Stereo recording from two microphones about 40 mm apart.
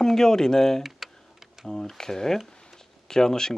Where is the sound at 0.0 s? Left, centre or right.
Centre.